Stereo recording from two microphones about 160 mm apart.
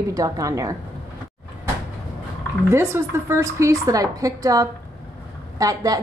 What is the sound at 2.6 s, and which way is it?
Speech, 15° right (ahead or behind).